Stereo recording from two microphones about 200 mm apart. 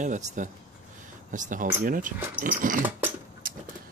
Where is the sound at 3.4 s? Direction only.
45° right (ahead or behind).